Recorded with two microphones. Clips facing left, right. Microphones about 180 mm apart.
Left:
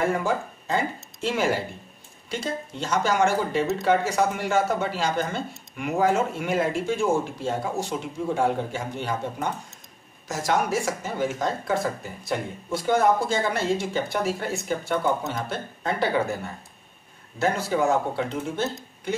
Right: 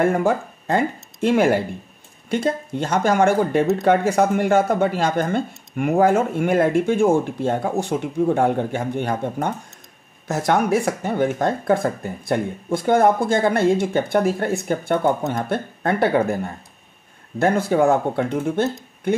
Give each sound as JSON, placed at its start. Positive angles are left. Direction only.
{"t": 0.0, "sound": "speech", "side_deg": -55}